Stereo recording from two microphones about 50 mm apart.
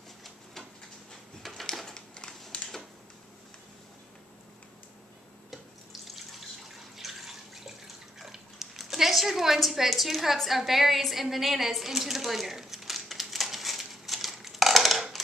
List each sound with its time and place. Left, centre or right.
1.4 s typing: centre
2.5 s a sound: centre
6.7 s water: centre